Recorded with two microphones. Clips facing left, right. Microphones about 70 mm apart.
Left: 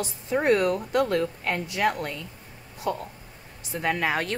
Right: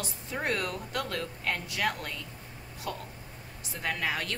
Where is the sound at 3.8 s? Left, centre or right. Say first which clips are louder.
Left 7 dB; left.